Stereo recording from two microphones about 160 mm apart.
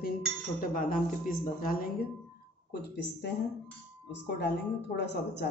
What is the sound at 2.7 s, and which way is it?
Speech, 90° left.